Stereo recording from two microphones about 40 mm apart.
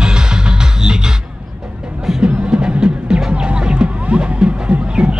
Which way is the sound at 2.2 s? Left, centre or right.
Right.